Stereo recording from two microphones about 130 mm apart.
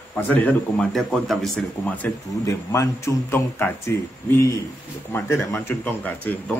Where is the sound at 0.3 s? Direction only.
10° left (ahead or behind).